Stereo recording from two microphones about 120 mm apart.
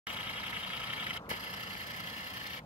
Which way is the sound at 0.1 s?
55° left (ahead or behind).